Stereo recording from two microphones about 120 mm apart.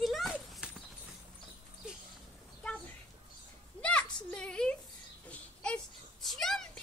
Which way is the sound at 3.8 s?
10° left (ahead or behind).